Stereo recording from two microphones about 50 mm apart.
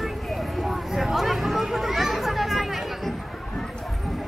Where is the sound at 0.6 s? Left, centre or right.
Centre.